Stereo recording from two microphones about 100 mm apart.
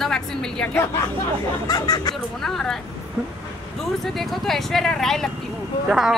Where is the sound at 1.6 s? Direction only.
40° left (ahead or behind).